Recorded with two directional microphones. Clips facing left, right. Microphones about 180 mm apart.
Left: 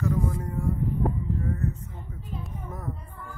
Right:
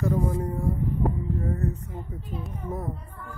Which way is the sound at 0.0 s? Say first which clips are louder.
Right 2 dB; 30° right (ahead or behind).